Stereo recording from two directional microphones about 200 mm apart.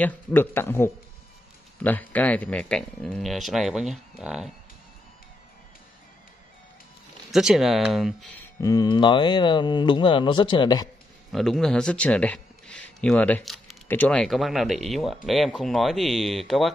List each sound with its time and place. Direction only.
0.0 s speech: 10° left (ahead or behind)
7.2 s speech: centre (ahead or behind); by 10.9 s 20° left (ahead or behind)
11.3 s speech: centre (ahead or behind)